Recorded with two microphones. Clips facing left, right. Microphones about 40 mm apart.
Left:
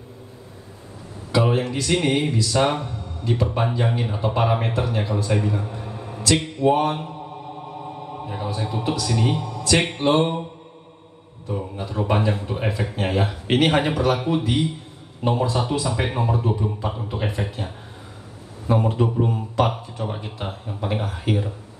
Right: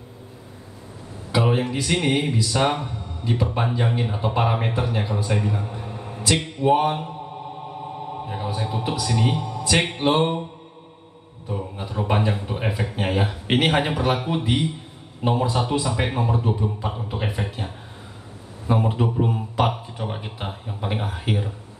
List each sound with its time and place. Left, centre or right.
1.3 s speech: centre
6.3 s mantra: centre
6.7 s speech: centre
8.1 s a sound: centre
8.5 s speech: centre
9.5 s music: centre
9.8 s speech: centre
11.4 s a sound: centre
11.9 s speech: centre